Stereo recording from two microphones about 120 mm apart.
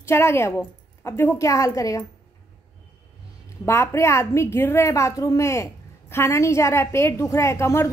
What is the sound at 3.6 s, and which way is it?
A woman's voice, 25° left (ahead or behind).